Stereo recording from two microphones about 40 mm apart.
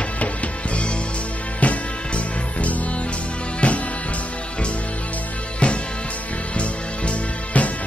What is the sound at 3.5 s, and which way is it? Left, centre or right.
Music, left.